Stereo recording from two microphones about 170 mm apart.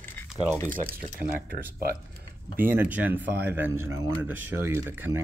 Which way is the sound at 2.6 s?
10° right (ahead or behind).